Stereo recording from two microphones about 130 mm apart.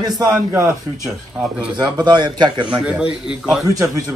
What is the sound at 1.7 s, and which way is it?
A man's voice, 35° right (ahead or behind).